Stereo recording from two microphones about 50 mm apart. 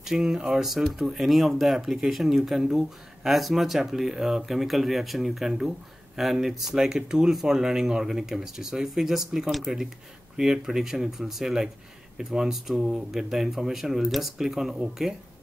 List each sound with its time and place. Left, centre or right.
0.0 s speech: centre